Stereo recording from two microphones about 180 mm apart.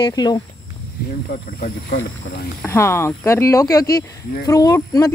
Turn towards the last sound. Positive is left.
turn(degrees=20)  # may be behind; listen again after turning